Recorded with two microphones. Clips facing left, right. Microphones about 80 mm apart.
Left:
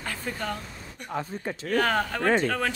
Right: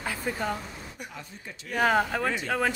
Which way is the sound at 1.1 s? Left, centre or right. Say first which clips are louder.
Left 11 dB; left.